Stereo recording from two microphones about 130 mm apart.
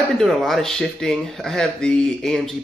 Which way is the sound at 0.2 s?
Centre (ahead or behind).